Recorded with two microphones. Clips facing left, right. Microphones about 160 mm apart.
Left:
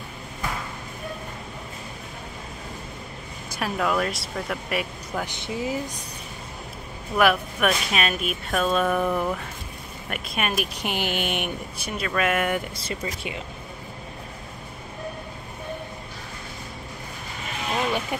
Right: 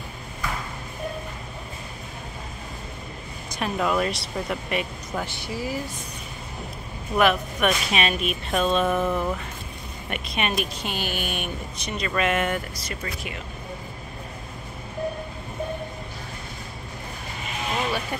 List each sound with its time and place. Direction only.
3.5 s speech: centre (ahead or behind)
5.2 s speech: 20° left (ahead or behind)
7.2 s speech: 5° left (ahead or behind)
11.8 s speech: 5° left (ahead or behind)
12.7 s speech: 30° left (ahead or behind)